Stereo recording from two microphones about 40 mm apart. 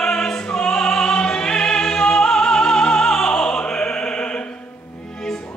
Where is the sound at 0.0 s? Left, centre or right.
Centre.